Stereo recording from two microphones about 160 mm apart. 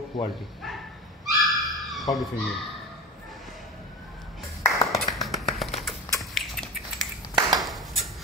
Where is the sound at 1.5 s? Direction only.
Centre (ahead or behind).